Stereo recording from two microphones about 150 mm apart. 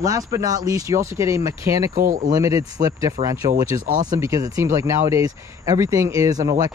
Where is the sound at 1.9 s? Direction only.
65° right (ahead or behind).